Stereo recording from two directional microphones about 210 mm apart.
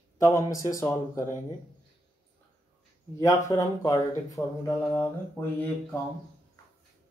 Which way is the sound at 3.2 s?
15° left (ahead or behind).